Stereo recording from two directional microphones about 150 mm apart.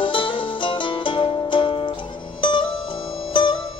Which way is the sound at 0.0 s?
35° left (ahead or behind).